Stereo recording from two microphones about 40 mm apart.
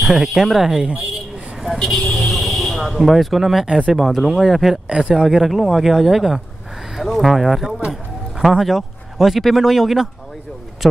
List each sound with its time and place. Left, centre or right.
0.0 s speech: centre
1.8 s speech: centre
2.1 s vehicle: centre
2.9 s speech: centre
4.8 s speech: right
5.1 s speech: centre
7.0 s a sound: centre
9.6 s speech: centre